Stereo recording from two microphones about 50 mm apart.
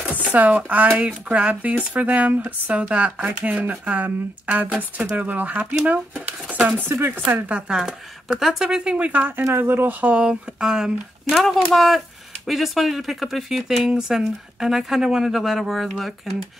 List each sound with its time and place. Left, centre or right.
0.0 s speech: right
5.9 s dishes: right
6.9 s speech: right
7.3 s speech: right
8.9 s speech: right
9.4 s speech: right
10.1 s speech: centre
11.3 s speech: centre